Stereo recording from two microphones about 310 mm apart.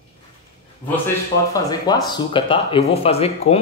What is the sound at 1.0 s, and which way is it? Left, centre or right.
Speech, centre.